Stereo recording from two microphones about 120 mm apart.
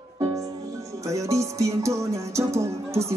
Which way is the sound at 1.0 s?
25° right (ahead or behind).